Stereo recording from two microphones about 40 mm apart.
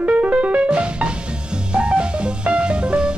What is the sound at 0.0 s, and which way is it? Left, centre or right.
Music, right.